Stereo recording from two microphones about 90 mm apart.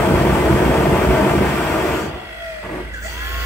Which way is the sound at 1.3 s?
Centre (ahead or behind).